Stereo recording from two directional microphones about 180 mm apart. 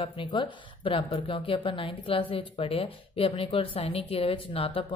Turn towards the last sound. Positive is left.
turn(degrees=30)  # may be behind; listen again after turning